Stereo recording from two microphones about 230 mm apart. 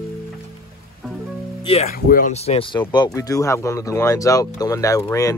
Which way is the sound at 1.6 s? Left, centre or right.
Left.